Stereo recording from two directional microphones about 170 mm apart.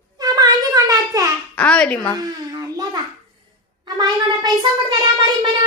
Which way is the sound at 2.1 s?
20° right (ahead or behind).